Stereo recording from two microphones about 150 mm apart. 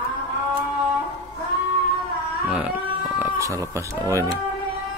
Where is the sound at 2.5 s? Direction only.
10° right (ahead or behind).